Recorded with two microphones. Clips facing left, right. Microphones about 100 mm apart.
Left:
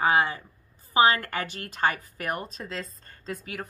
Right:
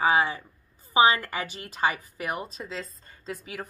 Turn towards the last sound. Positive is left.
turn(degrees=0)  # may be behind; listen again after turning